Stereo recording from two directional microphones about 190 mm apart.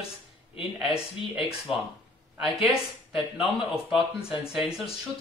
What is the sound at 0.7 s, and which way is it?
Speech, 5° right (ahead or behind).